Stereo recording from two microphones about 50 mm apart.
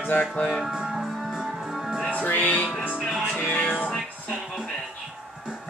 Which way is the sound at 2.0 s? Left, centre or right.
Left.